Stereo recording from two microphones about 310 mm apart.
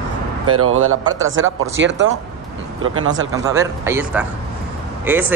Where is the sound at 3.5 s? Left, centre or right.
Centre.